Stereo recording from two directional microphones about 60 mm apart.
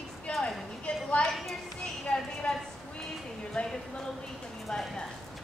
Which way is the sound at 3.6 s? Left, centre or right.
Centre.